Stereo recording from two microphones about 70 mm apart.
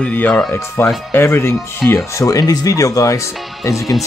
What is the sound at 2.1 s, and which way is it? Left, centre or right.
Speech, left.